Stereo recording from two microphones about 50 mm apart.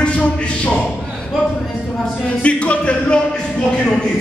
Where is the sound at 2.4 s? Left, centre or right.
Left.